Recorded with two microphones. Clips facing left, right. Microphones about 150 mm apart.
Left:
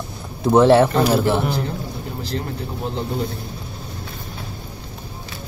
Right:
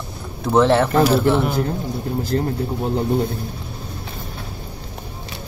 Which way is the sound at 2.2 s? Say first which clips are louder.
Right 6 dB; 50° right (ahead or behind).